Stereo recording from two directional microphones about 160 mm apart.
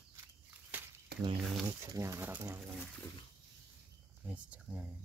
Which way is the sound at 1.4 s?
5° right (ahead or behind).